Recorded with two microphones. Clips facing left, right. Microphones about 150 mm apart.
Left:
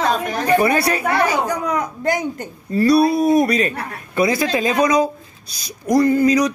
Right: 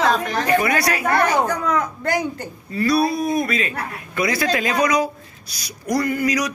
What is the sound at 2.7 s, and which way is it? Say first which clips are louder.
Speech: left 5 dB; 35° left (ahead or behind).